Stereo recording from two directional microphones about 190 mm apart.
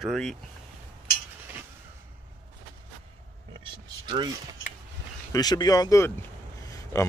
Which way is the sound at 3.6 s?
25° right (ahead or behind).